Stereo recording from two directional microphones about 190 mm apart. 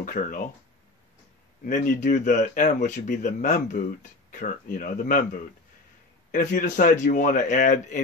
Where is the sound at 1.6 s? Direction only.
45° left (ahead or behind).